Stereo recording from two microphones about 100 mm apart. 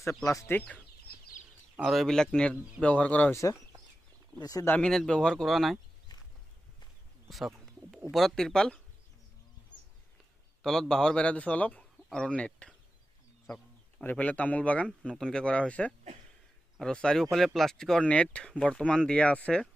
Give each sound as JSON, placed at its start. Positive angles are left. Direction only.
{"t": 0.2, "sound": "speech", "side_deg": 35}
{"t": 0.5, "sound": "speech", "side_deg": 15}
{"t": 1.8, "sound": "a man's voice", "side_deg": 0}
{"t": 4.4, "sound": "speech", "side_deg": 35}
{"t": 4.6, "sound": "speech", "side_deg": 10}
{"t": 7.2, "sound": "speech", "side_deg": 0}
{"t": 10.6, "sound": "speech", "side_deg": 5}
{"t": 14.0, "sound": "speech", "side_deg": 15}